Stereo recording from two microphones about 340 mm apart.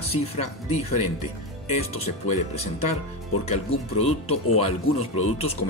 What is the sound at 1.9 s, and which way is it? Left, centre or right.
Speech, centre.